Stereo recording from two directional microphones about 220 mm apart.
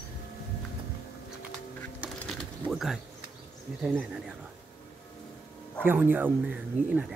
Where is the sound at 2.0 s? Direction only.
Centre (ahead or behind).